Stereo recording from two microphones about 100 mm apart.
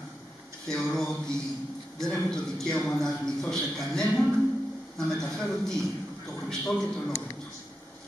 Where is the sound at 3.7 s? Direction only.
5° left (ahead or behind).